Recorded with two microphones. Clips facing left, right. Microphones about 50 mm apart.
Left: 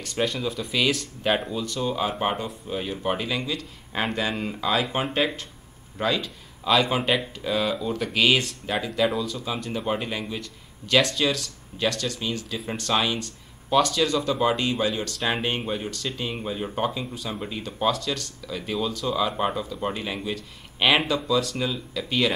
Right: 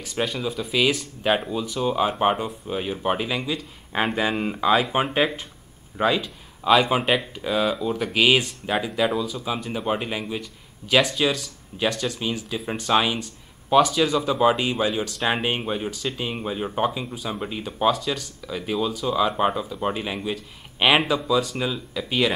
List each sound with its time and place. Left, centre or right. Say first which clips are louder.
0.0 s speech: even; centre